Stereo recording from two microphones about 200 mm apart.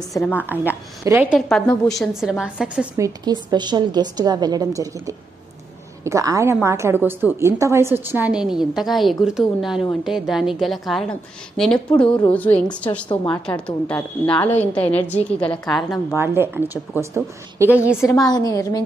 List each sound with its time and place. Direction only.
0.1 s a woman's voice: 10° left (ahead or behind)
0.4 s speech: 10° right (ahead or behind)
1.5 s a woman's voice: centre (ahead or behind)
3.0 s a woman's voice: 20° right (ahead or behind); by 13.0 s 5° left (ahead or behind)
13.1 s a woman's voice: 20° left (ahead or behind)
13.5 s a woman's voice: 10° left (ahead or behind)
16.1 s speech: 10° right (ahead or behind)
18.2 s a woman's voice: 20° left (ahead or behind)